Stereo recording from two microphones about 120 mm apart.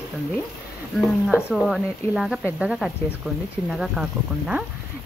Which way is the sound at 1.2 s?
Centre (ahead or behind).